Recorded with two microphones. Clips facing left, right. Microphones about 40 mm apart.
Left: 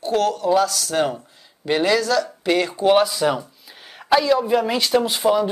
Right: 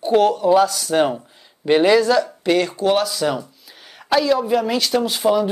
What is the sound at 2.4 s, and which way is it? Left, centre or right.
Speech, centre.